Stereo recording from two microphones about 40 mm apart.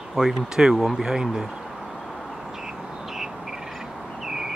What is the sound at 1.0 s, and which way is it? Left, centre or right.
Speech, centre.